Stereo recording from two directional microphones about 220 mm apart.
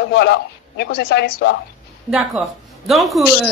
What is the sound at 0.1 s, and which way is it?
Speech, 50° left (ahead or behind).